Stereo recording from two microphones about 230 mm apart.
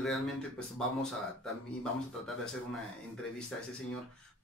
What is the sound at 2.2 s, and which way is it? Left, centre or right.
Speech, centre.